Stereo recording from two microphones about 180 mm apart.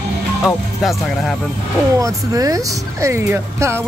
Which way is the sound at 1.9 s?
20° right (ahead or behind).